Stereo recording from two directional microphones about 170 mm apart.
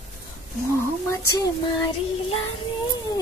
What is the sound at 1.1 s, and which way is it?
Speech, 20° left (ahead or behind).